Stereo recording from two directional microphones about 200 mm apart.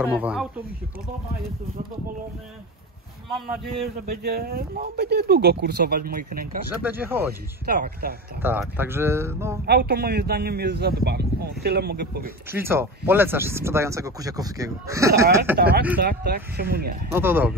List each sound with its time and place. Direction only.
0.0 s speech: 5° right (ahead or behind)
3.8 s speech: 50° right (ahead or behind)
6.8 s speech: 10° right (ahead or behind)
7.6 s speech: 50° right (ahead or behind)
8.4 s speech: 10° right (ahead or behind)
9.7 s speech: 55° right (ahead or behind)
12.4 s speech: 10° right (ahead or behind)
15.5 s speech: 55° right (ahead or behind)
17.1 s speech: 10° right (ahead or behind)